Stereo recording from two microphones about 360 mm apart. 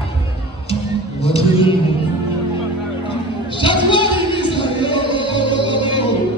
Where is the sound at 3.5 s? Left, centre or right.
Centre.